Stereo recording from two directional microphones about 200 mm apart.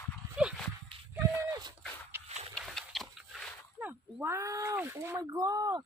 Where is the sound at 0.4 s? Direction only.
5° right (ahead or behind).